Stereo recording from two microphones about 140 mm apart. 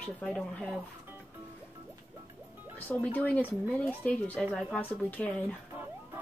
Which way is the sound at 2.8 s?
10° left (ahead or behind).